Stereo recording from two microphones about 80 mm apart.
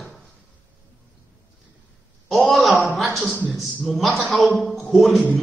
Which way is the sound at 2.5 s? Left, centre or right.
Centre.